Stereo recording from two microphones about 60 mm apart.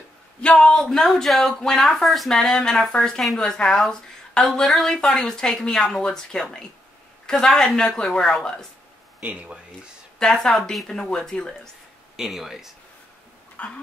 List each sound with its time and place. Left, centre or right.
0.4 s speech: centre
9.2 s speech: right
10.1 s speech: centre
12.2 s speech: centre
13.6 s dog: left